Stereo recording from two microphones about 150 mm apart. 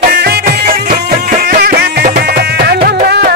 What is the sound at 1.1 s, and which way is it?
Music, 65° right (ahead or behind).